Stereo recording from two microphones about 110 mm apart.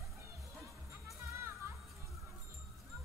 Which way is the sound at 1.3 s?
25° right (ahead or behind).